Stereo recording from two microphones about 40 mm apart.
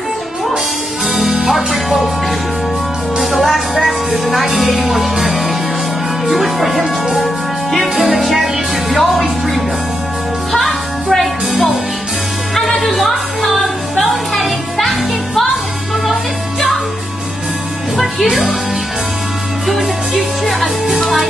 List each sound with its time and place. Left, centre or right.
1.1 s music: centre
3.2 s music: centre
4.6 s speech: centre
7.7 s music: centre
9.1 s speech: centre
10.5 s music: centre
11.5 s music: centre
12.5 s music: centre
17.9 s music: centre
19.7 s music: centre